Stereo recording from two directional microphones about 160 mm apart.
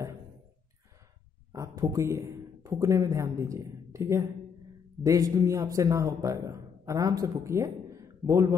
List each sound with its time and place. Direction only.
1.5 s a man's voice: 20° right (ahead or behind)